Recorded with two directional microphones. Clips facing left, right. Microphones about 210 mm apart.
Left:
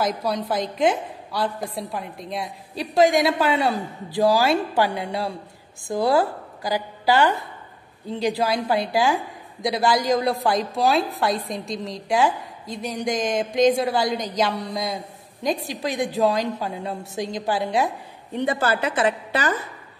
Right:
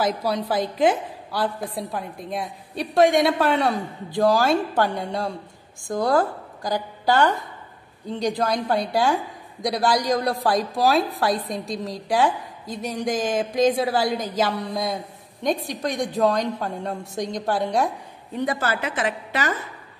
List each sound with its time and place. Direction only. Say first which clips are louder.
0.0 s a woman's voice: right 1 dB; 5° right (ahead or behind)
18.4 s a woman's voice: left 2 dB; 30° left (ahead or behind)